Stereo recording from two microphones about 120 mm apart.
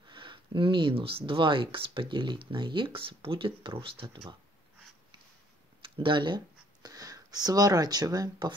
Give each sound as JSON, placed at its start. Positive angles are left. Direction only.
{"t": 0.1, "sound": "speech", "side_deg": -45}
{"t": 5.9, "sound": "speech", "side_deg": -40}